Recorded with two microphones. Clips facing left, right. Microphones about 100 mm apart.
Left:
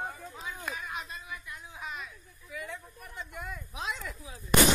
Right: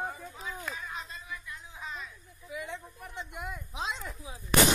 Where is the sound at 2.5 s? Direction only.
20° right (ahead or behind).